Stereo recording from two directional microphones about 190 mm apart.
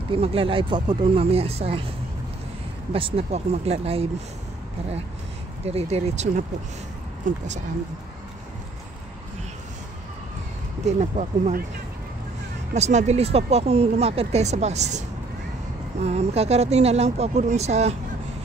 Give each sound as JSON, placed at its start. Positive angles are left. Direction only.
{"t": 0.1, "sound": "speech", "side_deg": -30}
{"t": 2.9, "sound": "speech", "side_deg": -30}
{"t": 5.7, "sound": "speech", "side_deg": -35}
{"t": 10.9, "sound": "speech", "side_deg": -35}
{"t": 12.7, "sound": "speech", "side_deg": -35}